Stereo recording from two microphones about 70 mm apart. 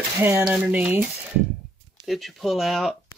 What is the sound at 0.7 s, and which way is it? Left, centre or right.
Speech, right.